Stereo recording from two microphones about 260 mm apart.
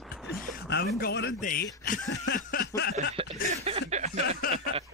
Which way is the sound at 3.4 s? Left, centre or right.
Right.